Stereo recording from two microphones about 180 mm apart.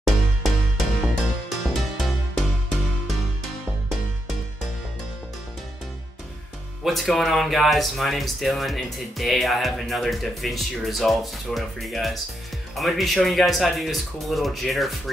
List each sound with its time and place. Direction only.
0.0 s music: centre (ahead or behind)
6.8 s speech: centre (ahead or behind)